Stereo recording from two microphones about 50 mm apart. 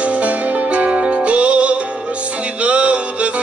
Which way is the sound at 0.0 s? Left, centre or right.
Right.